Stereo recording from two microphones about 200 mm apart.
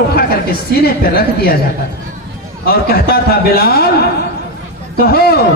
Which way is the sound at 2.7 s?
50° left (ahead or behind).